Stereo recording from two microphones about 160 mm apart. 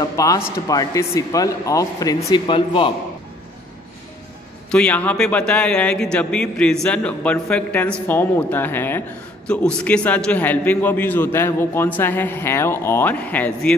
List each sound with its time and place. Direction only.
0.0 s a man's voice: 20° left (ahead or behind)
4.6 s a man's voice: 5° left (ahead or behind)